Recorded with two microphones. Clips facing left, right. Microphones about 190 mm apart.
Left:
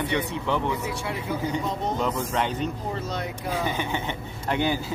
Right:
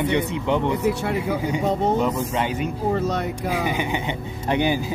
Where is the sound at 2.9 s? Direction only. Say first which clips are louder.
Right 7 dB; 60° right (ahead or behind).